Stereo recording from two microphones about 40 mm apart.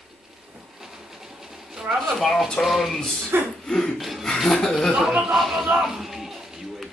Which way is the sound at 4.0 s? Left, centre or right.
Centre.